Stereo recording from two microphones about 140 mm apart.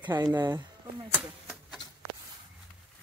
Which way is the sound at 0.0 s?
30° right (ahead or behind).